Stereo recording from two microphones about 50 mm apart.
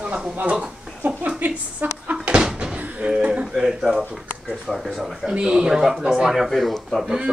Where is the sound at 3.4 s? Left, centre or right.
Centre.